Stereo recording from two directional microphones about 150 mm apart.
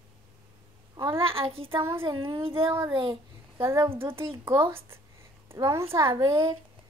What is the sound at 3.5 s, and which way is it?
A woman's voice, 20° right (ahead or behind).